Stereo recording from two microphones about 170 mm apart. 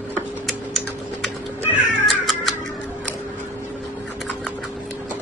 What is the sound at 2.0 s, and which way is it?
Music, centre (ahead or behind).